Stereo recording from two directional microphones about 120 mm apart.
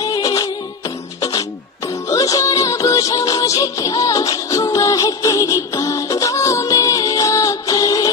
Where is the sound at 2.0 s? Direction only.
30° left (ahead or behind).